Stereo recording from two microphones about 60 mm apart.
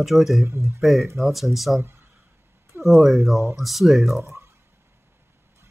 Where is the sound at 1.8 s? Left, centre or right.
Right.